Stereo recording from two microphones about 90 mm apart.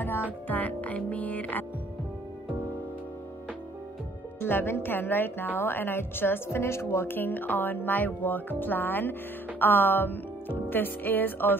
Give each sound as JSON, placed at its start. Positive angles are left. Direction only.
{"t": 0.5, "sound": "music", "side_deg": 15}
{"t": 4.4, "sound": "speech", "side_deg": 25}